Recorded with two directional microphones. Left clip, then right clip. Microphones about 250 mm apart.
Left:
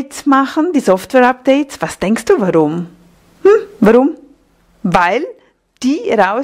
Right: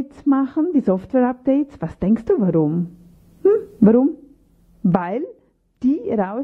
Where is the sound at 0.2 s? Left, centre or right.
Centre.